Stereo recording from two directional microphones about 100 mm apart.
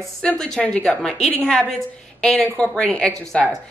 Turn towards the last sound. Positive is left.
turn(degrees=10)  # may be behind; listen again after turning